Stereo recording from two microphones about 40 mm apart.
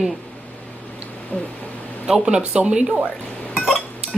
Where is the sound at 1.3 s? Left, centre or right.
Left.